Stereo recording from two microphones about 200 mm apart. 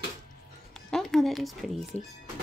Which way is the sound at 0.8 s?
Centre (ahead or behind).